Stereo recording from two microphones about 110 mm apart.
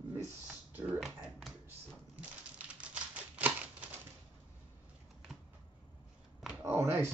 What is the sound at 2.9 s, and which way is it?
Typewriter, 15° right (ahead or behind).